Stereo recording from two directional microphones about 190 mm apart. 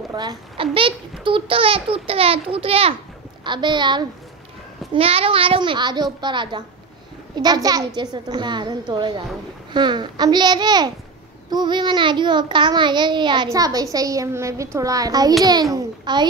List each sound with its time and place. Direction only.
0.1 s a child's voice: 20° right (ahead or behind)